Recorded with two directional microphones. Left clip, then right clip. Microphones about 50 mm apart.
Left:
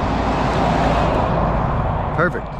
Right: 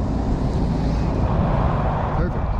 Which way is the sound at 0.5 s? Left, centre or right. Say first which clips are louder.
Left 10 dB; right.